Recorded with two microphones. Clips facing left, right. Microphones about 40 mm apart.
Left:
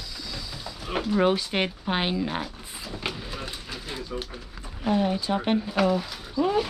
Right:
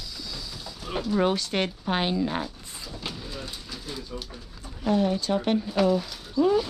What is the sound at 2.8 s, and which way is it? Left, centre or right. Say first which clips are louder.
Vehicle: left 3 dB; left.